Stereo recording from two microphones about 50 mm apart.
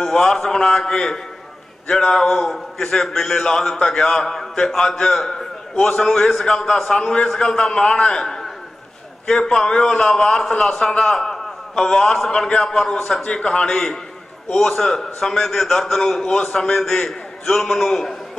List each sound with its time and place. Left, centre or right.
0.0 s a man's voice: centre
8.2 s a sound: centre
9.3 s a man's voice: centre
14.7 s a man's voice: centre